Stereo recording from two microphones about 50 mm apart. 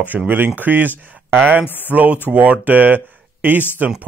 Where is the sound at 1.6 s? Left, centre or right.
Left.